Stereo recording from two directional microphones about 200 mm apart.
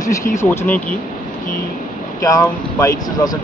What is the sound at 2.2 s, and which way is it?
Speech, 15° left (ahead or behind).